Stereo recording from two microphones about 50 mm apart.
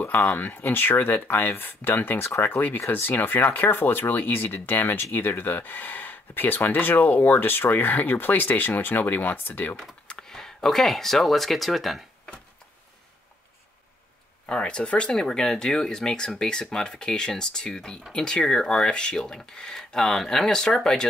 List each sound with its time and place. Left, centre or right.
0.0 s speech: left
10.2 s speech: centre
14.4 s speech: left
15.1 s speech: centre